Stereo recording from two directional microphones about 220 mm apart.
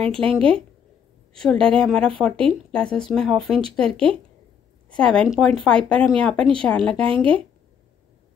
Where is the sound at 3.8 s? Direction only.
25° right (ahead or behind).